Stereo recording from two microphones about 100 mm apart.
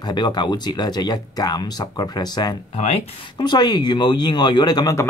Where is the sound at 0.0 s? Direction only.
45° left (ahead or behind).